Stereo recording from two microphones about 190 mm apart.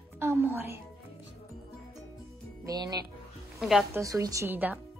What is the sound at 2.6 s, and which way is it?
Speech, 20° right (ahead or behind).